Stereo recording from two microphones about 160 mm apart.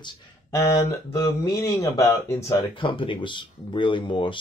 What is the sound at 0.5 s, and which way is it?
Speech, 20° left (ahead or behind).